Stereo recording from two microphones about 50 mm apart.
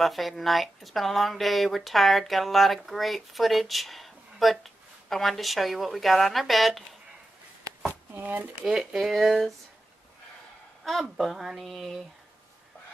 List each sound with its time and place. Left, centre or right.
0.0 s speech: centre
8.1 s speech: right
8.6 s speech: centre
10.8 s speech: centre